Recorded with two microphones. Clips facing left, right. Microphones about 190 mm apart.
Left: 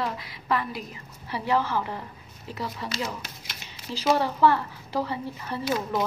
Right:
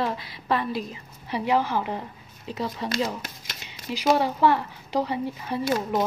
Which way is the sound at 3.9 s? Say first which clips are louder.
Right 2 dB; 15° right (ahead or behind).